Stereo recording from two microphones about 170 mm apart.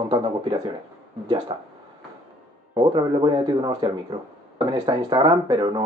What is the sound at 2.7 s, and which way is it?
Speech, 25° right (ahead or behind).